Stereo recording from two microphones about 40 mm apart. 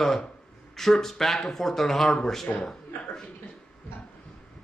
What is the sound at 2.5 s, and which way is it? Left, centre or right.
Chuckle, centre.